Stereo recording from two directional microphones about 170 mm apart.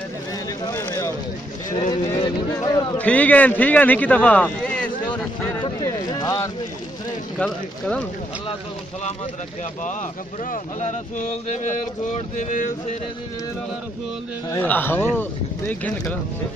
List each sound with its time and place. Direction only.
0.7 s a sound: 20° left (ahead or behind)
1.9 s a man's voice: 25° left (ahead or behind)
3.0 s speech: 10° left (ahead or behind)
5.6 s a sound: 25° left (ahead or behind)
7.3 s speech: 5° left (ahead or behind)
10.5 s speech: 45° left (ahead or behind)
14.6 s speech: 10° left (ahead or behind)